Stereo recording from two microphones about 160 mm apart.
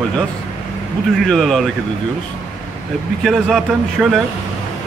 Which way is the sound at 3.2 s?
Centre (ahead or behind).